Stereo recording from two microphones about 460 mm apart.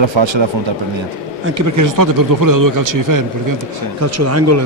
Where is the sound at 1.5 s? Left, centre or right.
Right.